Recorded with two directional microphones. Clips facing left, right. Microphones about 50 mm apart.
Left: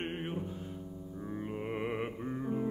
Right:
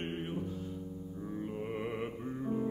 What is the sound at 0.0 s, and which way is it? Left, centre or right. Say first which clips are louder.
Music: left 1 dB; left.